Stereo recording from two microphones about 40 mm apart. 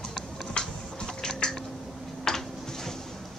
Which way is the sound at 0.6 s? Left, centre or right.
Centre.